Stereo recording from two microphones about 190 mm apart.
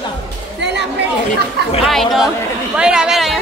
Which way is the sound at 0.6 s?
65° right (ahead or behind).